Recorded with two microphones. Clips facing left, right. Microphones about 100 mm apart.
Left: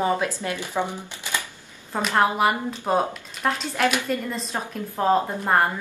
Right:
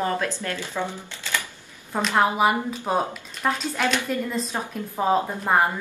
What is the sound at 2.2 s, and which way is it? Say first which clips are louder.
A woman's voice: even; centre (ahead or behind).